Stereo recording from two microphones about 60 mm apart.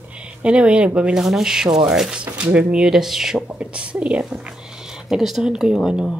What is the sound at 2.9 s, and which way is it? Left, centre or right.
Speech, centre.